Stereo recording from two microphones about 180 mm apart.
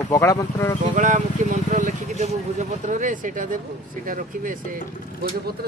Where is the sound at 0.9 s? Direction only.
45° right (ahead or behind).